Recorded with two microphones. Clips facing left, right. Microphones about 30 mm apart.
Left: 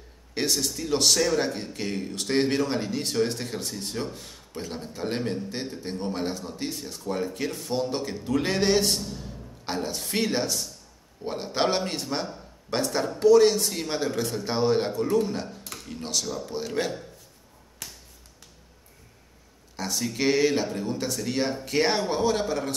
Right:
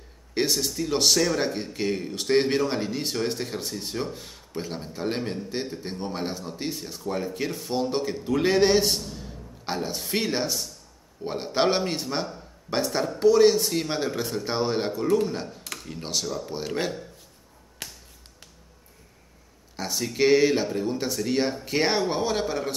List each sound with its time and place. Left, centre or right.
0.3 s speech: centre
17.8 s finger snapping: right
19.8 s speech: centre